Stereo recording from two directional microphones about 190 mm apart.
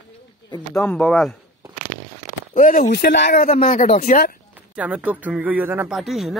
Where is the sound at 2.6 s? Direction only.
45° left (ahead or behind).